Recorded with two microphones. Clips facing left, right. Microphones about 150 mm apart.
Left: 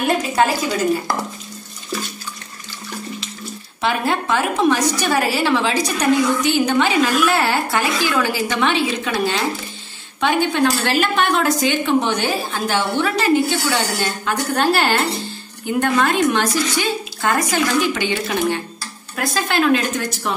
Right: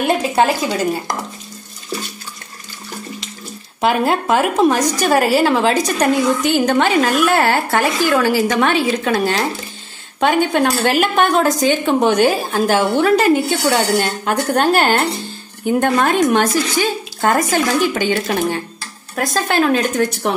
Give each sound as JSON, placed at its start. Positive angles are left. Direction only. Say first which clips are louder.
{"t": 3.8, "sound": "a woman's voice", "louder": "right 4 dB", "side_deg": -45}
{"t": 10.2, "sound": "a woman's voice", "louder": "right 2 dB", "side_deg": -50}